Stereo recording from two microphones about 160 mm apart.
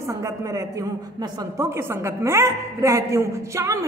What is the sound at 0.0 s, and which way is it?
A woman's voice, 20° right (ahead or behind).